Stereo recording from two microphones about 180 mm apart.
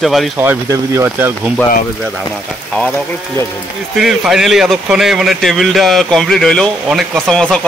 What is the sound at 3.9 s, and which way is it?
Speech, centre (ahead or behind).